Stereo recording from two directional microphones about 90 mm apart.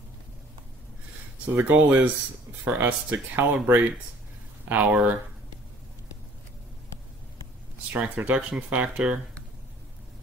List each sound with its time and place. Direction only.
1.5 s speech: 20° right (ahead or behind)
7.9 s speech: 15° right (ahead or behind)